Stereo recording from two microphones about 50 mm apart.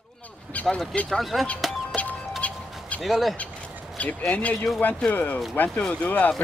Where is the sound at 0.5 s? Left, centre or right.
Left.